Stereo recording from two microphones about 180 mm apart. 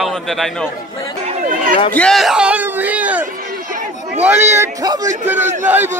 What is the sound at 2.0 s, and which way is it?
A man's voice, centre (ahead or behind).